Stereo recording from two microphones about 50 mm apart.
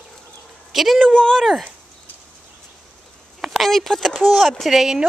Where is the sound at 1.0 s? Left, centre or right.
Centre.